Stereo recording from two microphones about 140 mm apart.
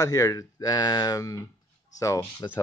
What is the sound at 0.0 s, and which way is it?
Speech, 25° left (ahead or behind).